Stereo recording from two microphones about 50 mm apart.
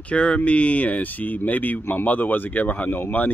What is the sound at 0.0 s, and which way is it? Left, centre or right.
Speech, left.